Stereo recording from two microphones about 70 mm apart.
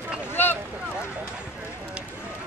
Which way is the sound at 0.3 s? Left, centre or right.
Left.